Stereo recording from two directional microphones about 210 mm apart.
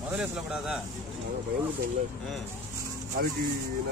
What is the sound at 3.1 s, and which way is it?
Speech, 45° right (ahead or behind).